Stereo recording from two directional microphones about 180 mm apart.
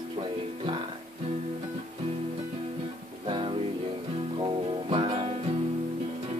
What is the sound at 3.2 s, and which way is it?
Music, 30° right (ahead or behind).